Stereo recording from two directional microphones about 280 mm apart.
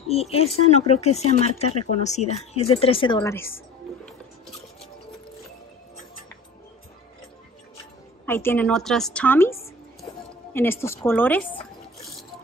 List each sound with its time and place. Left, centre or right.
0.1 s a woman's voice: left
8.3 s a woman's voice: centre